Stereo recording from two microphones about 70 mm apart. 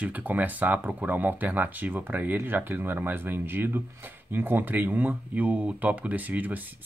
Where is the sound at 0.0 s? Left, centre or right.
Right.